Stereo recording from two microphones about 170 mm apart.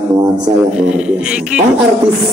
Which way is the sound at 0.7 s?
5° right (ahead or behind).